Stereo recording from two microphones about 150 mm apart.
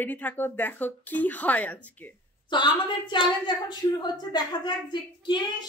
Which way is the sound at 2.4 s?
30° left (ahead or behind).